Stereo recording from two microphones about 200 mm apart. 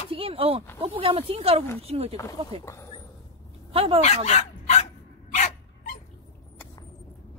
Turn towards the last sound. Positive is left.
turn(degrees=35)  # may be behind; listen again after turning